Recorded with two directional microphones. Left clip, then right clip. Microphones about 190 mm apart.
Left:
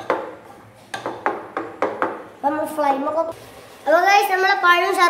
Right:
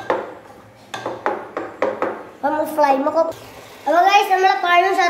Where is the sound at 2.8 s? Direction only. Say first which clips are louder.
Right 4 dB; 30° right (ahead or behind).